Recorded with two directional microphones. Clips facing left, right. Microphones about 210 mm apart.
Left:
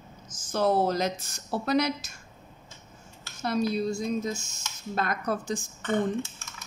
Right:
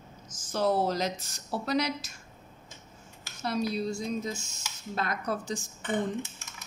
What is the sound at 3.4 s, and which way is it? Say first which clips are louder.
Speech: left 3 dB; 50° left (ahead or behind).